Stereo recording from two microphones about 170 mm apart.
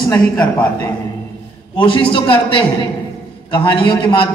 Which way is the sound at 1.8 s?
30° left (ahead or behind).